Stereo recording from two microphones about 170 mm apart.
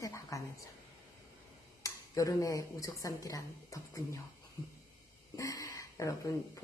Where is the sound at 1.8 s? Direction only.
20° left (ahead or behind).